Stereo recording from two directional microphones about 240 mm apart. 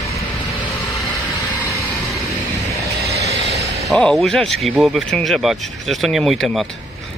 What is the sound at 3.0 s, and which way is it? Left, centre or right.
Vehicle, right.